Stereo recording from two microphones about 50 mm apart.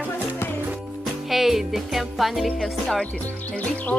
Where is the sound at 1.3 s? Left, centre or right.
Centre.